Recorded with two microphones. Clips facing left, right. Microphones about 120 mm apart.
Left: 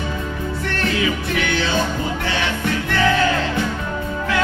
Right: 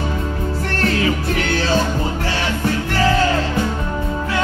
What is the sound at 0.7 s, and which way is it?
Music, 40° right (ahead or behind).